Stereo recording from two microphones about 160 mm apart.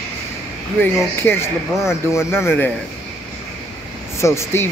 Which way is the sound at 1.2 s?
15° left (ahead or behind).